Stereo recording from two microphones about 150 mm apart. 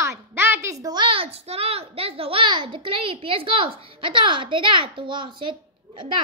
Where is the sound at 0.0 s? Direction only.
15° right (ahead or behind).